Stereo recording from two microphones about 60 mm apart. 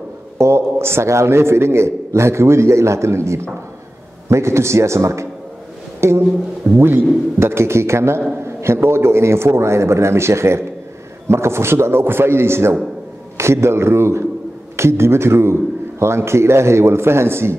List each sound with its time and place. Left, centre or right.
0.4 s a man's voice: right
5.9 s a sound: right
6.8 s a man's voice: right